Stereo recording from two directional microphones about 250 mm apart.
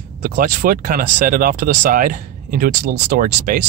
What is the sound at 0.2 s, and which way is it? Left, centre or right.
Speech, right.